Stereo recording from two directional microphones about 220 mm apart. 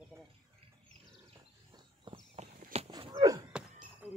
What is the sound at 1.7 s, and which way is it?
Walk, 20° right (ahead or behind).